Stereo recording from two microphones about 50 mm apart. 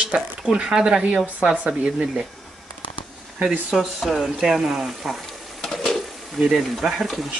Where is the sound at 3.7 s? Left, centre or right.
Centre.